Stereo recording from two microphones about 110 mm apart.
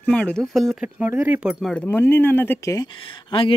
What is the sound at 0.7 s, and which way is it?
Speech, 15° right (ahead or behind).